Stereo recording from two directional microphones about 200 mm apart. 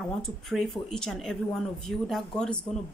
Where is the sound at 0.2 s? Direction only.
Centre (ahead or behind).